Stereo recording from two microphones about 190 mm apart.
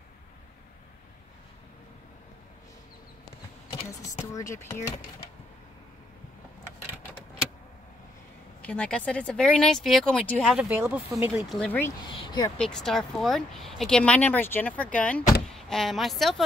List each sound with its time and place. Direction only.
4.2 s speech: 15° left (ahead or behind)
8.6 s speech: 5° left (ahead or behind); by 11.4 s 10° right (ahead or behind)
11.4 s speech: 5° left (ahead or behind)
12.1 s speech: 25° left (ahead or behind)
12.5 s speech: 5° left (ahead or behind)